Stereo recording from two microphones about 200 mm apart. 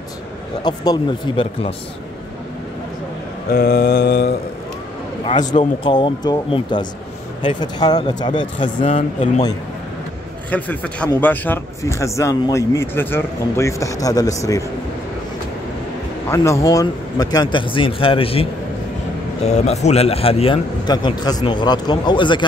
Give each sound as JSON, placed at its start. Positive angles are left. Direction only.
{"t": 0.7, "sound": "a man's voice", "side_deg": 20}
{"t": 3.4, "sound": "mantra", "side_deg": 55}
{"t": 5.6, "sound": "a man's voice", "side_deg": 25}
{"t": 10.5, "sound": "a man's voice", "side_deg": 5}
{"t": 16.3, "sound": "a man's voice", "side_deg": 15}